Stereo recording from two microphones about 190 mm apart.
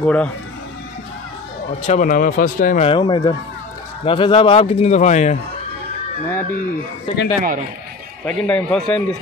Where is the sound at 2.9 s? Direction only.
25° left (ahead or behind).